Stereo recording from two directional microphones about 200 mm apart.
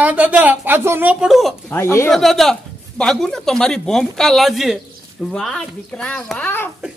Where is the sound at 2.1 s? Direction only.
Centre (ahead or behind).